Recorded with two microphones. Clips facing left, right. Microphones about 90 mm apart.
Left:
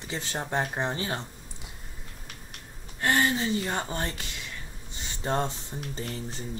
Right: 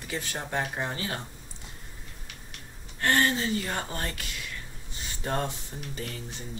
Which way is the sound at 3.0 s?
15° left (ahead or behind).